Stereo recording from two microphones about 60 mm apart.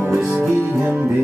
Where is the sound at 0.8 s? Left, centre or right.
Right.